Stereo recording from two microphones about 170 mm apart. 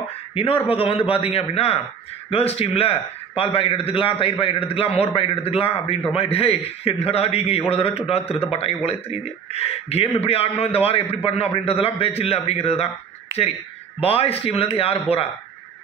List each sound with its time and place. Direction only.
0.3 s a man's voice: 35° left (ahead or behind)
13.9 s a man's voice: 35° left (ahead or behind)